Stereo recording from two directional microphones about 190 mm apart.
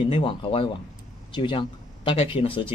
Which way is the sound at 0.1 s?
30° left (ahead or behind).